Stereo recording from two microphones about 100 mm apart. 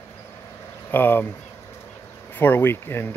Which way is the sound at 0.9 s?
20° left (ahead or behind).